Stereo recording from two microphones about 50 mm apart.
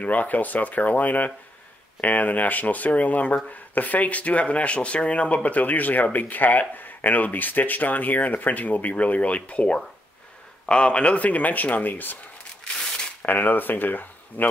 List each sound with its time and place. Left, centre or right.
0.0 s speech: left
13.2 s speech: left